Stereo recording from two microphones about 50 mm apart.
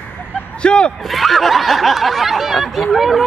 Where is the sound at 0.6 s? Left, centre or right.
Left.